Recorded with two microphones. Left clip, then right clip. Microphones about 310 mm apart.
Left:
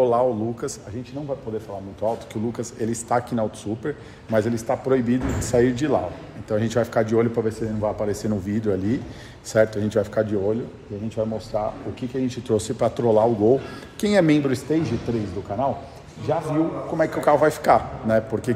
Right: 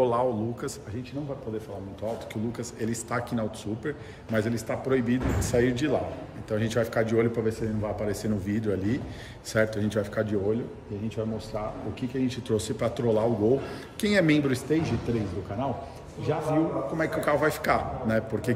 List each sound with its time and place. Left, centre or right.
0.0 s a man's voice: centre
2.0 s a man's voice: centre